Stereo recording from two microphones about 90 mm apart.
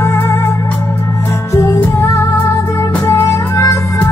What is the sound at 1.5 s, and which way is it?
Music, 35° left (ahead or behind).